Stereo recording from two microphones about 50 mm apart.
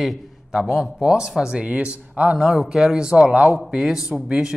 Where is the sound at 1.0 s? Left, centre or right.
Centre.